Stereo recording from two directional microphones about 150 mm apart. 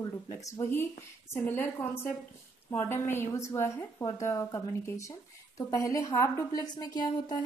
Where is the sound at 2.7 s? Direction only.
20° left (ahead or behind).